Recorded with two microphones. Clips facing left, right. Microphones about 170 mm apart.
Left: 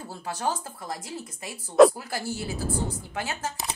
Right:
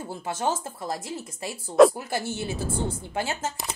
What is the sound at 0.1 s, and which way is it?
A woman's voice, 25° right (ahead or behind).